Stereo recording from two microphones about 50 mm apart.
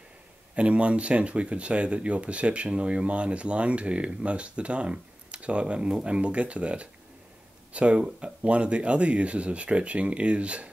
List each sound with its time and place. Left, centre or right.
0.6 s speech: right